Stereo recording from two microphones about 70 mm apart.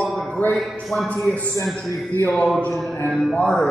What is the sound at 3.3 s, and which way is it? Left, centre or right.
Music, centre.